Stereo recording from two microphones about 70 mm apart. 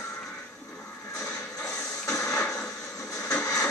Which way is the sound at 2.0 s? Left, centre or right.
Left.